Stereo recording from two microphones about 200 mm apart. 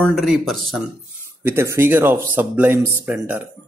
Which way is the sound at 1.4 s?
10° right (ahead or behind).